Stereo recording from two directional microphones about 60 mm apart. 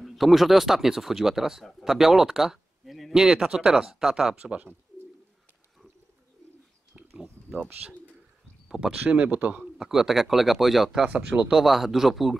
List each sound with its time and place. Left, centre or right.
0.0 s speech: centre
4.4 s speech: centre
8.6 s a sound: centre
9.0 s speech: right
9.8 s speech: centre
11.1 s speech: centre